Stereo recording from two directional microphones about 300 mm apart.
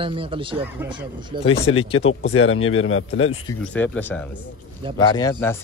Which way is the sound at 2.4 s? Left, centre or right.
Left.